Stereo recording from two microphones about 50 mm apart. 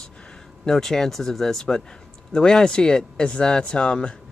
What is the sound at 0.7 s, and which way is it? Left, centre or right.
Speech, centre.